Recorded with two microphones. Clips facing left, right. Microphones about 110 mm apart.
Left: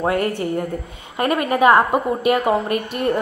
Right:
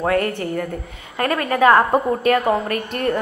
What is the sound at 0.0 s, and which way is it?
A woman's voice, 25° left (ahead or behind).